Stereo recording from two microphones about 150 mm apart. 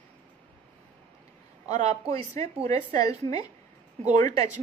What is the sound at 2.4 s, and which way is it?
Speech, 45° right (ahead or behind).